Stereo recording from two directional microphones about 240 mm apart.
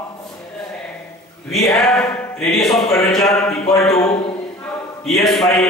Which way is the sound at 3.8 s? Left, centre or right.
Centre.